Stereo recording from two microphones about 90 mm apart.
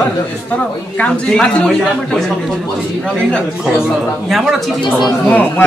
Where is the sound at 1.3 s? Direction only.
10° left (ahead or behind).